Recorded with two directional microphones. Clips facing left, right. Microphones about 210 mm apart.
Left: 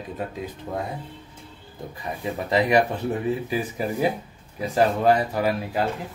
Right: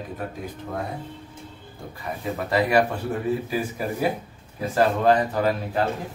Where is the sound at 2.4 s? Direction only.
15° left (ahead or behind).